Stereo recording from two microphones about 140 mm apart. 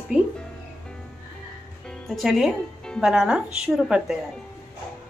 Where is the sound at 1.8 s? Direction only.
Centre (ahead or behind).